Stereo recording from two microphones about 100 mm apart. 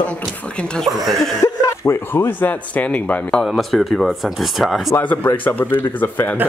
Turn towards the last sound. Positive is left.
turn(degrees=20)  # may be behind; listen again after turning